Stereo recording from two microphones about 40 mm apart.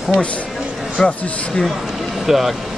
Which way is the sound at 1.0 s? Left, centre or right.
Centre.